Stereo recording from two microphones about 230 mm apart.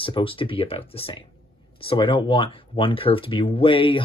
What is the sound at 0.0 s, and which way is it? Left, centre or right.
Speech, left.